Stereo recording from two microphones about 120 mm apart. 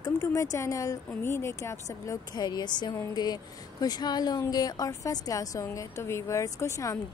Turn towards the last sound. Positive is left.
turn(degrees=25)  # may be behind; listen again after turning